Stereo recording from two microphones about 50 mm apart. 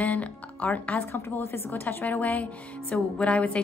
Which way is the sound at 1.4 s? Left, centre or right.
Left.